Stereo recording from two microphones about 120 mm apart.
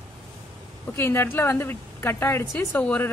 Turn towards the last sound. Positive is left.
turn(degrees=15)  # may be behind; listen again after turning